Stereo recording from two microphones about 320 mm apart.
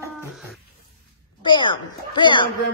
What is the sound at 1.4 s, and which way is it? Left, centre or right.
A woman's voice, centre.